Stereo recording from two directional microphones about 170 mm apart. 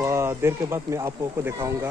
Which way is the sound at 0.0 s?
15° right (ahead or behind).